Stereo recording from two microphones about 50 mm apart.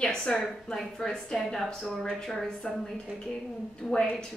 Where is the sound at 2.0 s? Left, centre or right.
Centre.